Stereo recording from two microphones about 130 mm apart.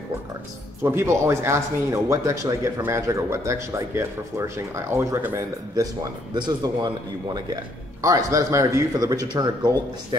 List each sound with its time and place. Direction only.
0.8 s speech: 20° right (ahead or behind)
6.3 s speech: 35° right (ahead or behind)
8.0 s speech: 25° right (ahead or behind)